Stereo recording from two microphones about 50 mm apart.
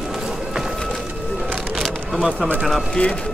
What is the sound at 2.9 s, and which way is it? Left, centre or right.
Speech, centre.